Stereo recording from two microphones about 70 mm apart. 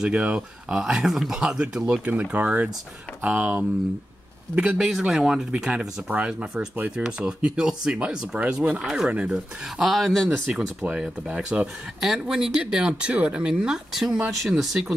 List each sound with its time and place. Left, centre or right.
0.0 s speech: centre
4.6 s speech: centre
10.5 s speech: centre